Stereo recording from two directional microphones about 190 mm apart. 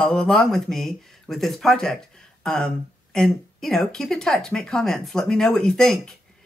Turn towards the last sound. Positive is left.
turn(degrees=0)  # may be behind; listen again after turning